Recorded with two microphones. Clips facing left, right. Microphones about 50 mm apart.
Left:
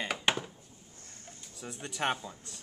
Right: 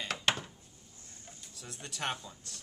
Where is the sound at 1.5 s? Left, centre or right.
Centre.